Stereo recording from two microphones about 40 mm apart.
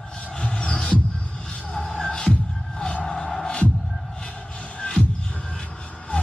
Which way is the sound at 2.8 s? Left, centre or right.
Left.